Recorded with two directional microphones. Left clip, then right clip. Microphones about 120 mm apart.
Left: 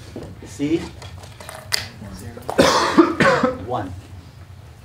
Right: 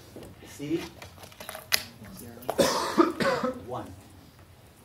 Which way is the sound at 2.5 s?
5° left (ahead or behind).